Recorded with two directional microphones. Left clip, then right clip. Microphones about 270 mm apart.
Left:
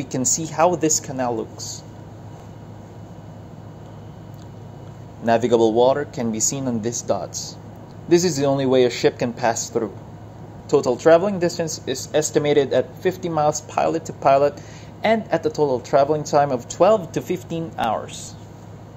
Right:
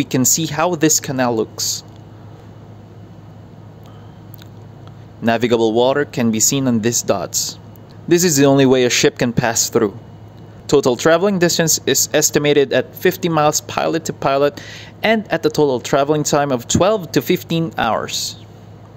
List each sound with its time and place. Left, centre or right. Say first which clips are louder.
0.0 s speech: right 6 dB; right
5.2 s speech: right 1 dB; right